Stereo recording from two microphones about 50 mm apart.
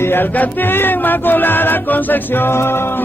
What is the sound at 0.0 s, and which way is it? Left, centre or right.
Music, left.